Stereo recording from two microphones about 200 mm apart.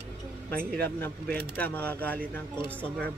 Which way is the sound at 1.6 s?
10° left (ahead or behind).